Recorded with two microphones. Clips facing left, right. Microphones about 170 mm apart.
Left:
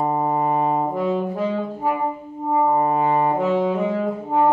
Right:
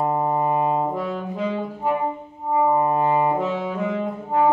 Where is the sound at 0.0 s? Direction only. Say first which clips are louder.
Left 1 dB; 20° left (ahead or behind).